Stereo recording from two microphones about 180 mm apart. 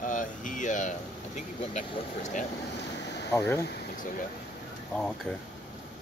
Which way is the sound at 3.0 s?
75° left (ahead or behind).